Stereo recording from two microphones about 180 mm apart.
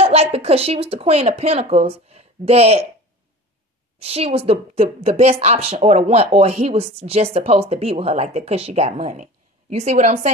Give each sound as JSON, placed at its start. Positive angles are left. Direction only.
{"t": 0.0, "sound": "speech", "side_deg": -35}
{"t": 4.0, "sound": "speech", "side_deg": -35}